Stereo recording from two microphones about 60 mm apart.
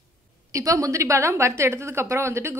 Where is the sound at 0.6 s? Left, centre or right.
Right.